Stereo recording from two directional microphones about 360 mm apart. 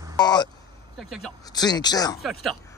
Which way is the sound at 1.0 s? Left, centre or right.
Centre.